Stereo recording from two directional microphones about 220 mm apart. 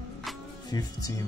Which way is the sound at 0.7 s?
15° left (ahead or behind).